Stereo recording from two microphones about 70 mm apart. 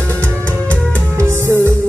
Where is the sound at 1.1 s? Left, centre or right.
Right.